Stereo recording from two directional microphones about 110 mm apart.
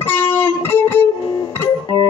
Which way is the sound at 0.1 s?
20° left (ahead or behind).